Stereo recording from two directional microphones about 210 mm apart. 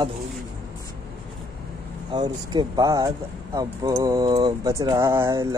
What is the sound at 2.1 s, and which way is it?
Speech, 20° right (ahead or behind).